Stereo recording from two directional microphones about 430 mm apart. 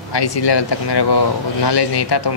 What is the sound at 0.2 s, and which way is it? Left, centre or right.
A woman's voice, left.